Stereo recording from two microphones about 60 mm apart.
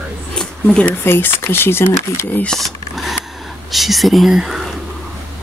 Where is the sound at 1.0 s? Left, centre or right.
Left.